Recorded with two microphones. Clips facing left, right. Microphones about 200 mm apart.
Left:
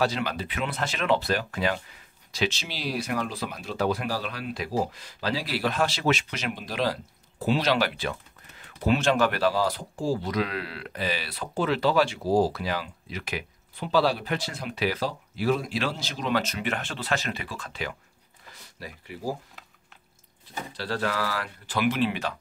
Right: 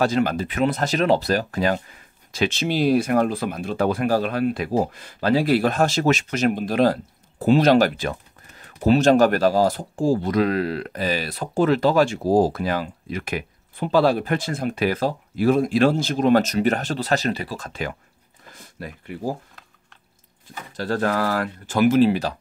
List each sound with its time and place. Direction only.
0.0 s speech: 45° right (ahead or behind)
20.4 s speech: 45° right (ahead or behind)